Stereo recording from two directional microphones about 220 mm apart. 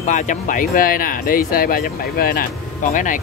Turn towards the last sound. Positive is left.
turn(degrees=35)  # may be behind; listen again after turning